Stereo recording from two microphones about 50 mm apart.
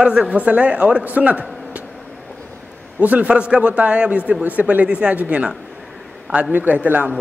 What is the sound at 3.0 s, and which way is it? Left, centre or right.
A man's voice, right.